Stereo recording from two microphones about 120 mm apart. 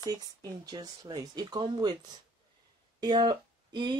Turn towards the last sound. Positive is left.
turn(degrees=-40)  # may be behind; listen again after turning